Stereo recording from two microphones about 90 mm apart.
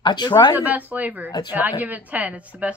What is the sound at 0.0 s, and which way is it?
Speech, 55° left (ahead or behind).